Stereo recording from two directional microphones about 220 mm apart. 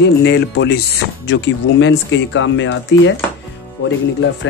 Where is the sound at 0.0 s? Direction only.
55° left (ahead or behind).